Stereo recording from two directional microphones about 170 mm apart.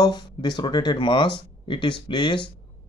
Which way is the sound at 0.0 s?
25° left (ahead or behind).